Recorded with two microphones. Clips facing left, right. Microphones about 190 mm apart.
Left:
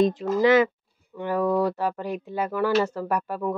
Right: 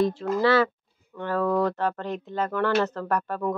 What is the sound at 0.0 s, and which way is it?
Speech, 15° left (ahead or behind).